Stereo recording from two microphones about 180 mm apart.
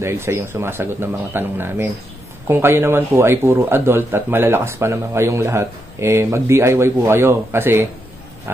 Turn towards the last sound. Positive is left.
turn(degrees=-15)  # may be behind; listen again after turning